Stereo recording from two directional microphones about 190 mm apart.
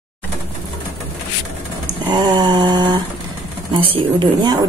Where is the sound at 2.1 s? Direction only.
20° right (ahead or behind).